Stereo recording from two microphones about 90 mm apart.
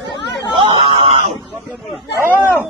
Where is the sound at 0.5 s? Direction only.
65° right (ahead or behind).